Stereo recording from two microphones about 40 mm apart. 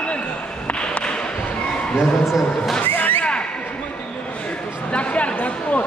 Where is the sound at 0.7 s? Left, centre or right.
Left.